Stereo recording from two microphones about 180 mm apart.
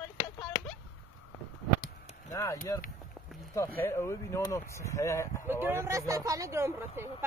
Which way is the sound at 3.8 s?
15° left (ahead or behind).